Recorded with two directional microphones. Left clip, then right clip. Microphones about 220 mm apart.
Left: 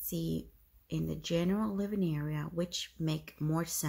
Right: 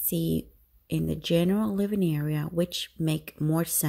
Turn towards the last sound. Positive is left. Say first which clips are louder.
# right 7 dB
turn(degrees=-40)  # may be behind; listen again after turning